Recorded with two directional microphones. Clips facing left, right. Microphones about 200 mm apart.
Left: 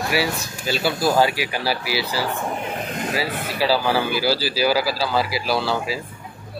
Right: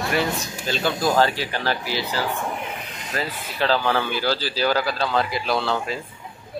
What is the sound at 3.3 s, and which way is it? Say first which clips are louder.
Speech: left 6 dB; 60° left (ahead or behind).